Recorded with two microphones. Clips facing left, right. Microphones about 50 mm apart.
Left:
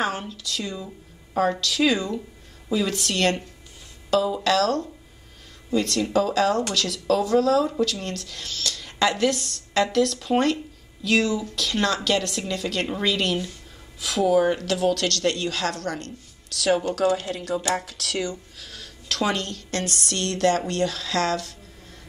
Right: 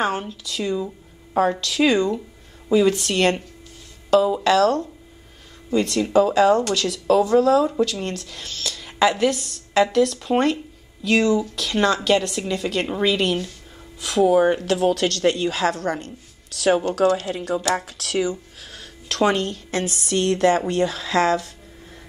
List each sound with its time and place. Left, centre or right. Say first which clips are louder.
0.0 s a woman's voice: right 3 dB; centre